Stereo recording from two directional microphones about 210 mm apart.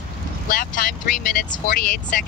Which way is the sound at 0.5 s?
40° left (ahead or behind).